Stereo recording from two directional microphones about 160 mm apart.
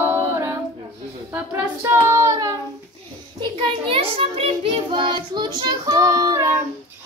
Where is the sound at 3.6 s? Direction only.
35° right (ahead or behind).